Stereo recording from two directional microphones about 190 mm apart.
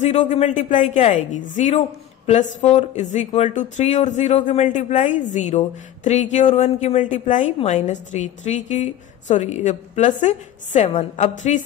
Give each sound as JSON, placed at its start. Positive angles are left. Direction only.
{"t": 0.0, "sound": "speech", "side_deg": 40}